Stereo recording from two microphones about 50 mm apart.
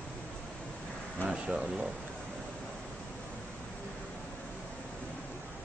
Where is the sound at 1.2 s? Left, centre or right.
Left.